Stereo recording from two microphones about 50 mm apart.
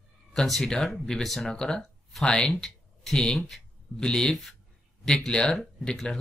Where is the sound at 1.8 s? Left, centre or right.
Centre.